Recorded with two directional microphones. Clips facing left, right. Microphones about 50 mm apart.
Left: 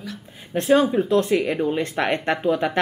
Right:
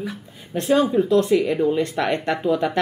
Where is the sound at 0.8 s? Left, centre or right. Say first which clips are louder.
Right 1 dB; left.